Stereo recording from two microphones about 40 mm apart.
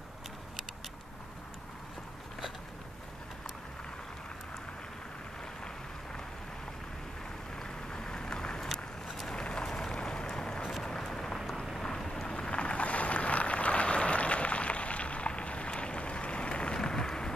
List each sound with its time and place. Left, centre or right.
7.5 s vehicle: centre
9.9 s boat: centre
11.8 s vehicle: centre